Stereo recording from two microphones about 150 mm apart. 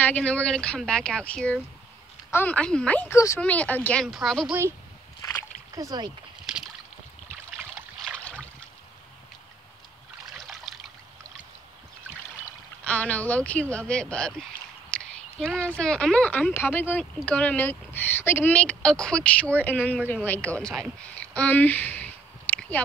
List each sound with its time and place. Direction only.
0.0 s speech: 10° left (ahead or behind)
5.8 s speech: 25° right (ahead or behind)
6.4 s rowboat: centre (ahead or behind)
7.5 s boat: 10° right (ahead or behind)
10.4 s trickle: centre (ahead or behind)
12.8 s speech: 10° left (ahead or behind)